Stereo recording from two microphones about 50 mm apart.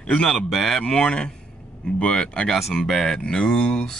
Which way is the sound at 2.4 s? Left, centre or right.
Centre.